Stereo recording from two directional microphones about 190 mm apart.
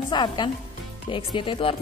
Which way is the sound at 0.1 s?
25° left (ahead or behind).